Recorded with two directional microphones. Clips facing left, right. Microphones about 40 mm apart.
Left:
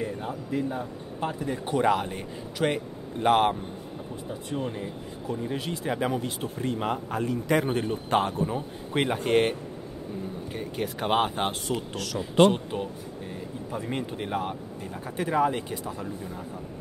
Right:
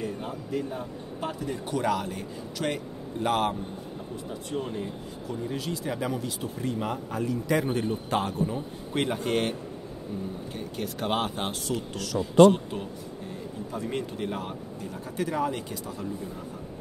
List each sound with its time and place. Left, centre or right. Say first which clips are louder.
0.0 s a man's voice: left 1 dB; left
5.5 s a man's voice: left 1 dB; left